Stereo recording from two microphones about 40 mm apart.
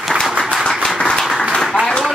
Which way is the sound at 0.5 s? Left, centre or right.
Centre.